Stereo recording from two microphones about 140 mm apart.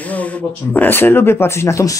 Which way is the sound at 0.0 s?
10° left (ahead or behind).